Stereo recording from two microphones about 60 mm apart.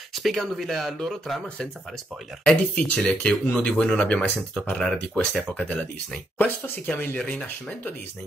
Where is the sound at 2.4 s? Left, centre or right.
Centre.